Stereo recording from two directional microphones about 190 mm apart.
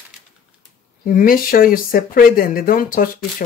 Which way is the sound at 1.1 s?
50° left (ahead or behind).